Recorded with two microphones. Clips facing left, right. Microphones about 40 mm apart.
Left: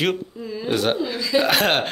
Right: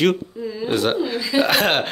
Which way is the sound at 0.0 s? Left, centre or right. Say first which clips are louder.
Right 4 dB; centre.